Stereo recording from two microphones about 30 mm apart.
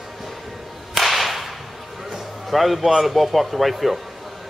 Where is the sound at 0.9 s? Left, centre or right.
Centre.